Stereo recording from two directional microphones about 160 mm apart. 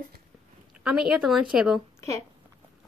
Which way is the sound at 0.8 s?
5° right (ahead or behind).